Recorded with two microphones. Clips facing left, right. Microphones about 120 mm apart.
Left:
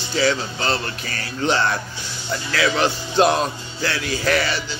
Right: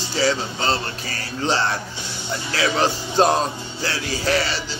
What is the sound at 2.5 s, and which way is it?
Speech, 35° right (ahead or behind).